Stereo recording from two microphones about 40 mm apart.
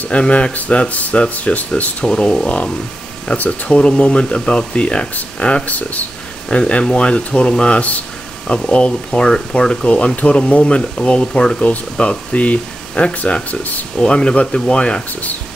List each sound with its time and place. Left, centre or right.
0.1 s speech: left
2.0 s speech: left
5.7 s speech: left
6.5 s speech: left
13.9 s speech: left